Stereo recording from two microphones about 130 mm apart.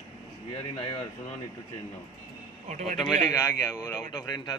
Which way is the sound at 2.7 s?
65° right (ahead or behind).